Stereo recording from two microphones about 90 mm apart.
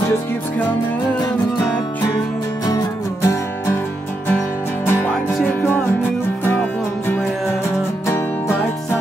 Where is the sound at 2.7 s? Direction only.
45° left (ahead or behind).